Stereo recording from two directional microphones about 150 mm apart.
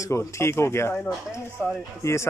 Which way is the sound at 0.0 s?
20° left (ahead or behind).